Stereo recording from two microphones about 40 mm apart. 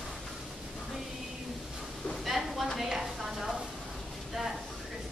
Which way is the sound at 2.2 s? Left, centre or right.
Centre.